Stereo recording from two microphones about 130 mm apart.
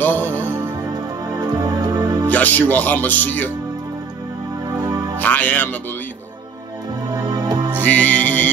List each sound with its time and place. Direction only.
0.0 s music: 15° left (ahead or behind)
1.3 s music: 30° right (ahead or behind)
2.2 s speech: 15° left (ahead or behind)
4.7 s music: 30° right (ahead or behind)
5.2 s speech: 15° left (ahead or behind)
7.2 s music: 30° right (ahead or behind)
7.8 s music: 10° left (ahead or behind)